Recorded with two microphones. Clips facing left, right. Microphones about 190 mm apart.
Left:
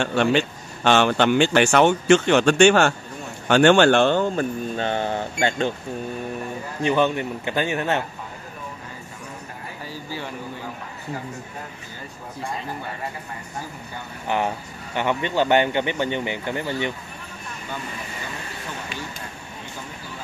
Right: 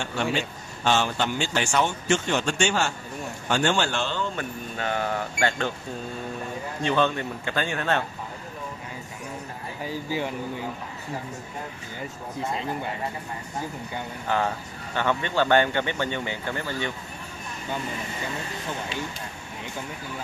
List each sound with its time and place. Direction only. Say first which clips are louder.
0.0 s speech: left 7 dB; 70° left (ahead or behind)
4.4 s speech: left 7 dB; 25° left (ahead or behind)
6.8 s speech: left 4 dB; 15° left (ahead or behind)
9.8 s speech: right 5 dB; 15° right (ahead or behind)
12.4 s speech: right 1 dB; 20° right (ahead or behind)
14.2 s speech: left 2 dB; 15° left (ahead or behind)